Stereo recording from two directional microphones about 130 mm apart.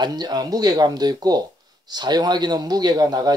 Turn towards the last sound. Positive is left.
turn(degrees=-30)  # may be behind; listen again after turning